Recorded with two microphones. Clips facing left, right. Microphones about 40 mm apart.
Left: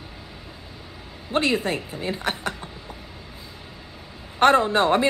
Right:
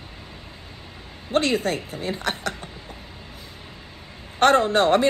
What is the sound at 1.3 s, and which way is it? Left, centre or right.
A woman's voice, left.